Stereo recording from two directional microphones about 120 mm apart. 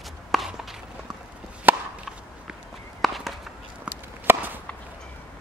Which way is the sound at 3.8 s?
15° right (ahead or behind).